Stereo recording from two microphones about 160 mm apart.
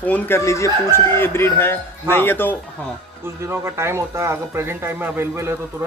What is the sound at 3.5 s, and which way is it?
Speech, 15° right (ahead or behind).